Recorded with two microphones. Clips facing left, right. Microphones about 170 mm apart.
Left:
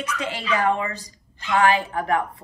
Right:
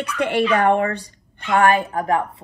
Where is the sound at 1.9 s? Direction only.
35° right (ahead or behind).